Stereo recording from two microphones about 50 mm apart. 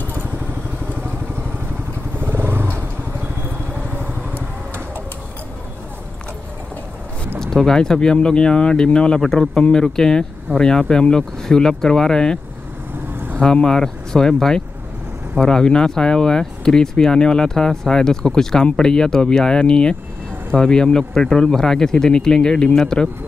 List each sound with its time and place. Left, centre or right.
2.1 s motorcycle: right
3.4 s vehicle: right
7.3 s speech: centre
13.4 s speech: centre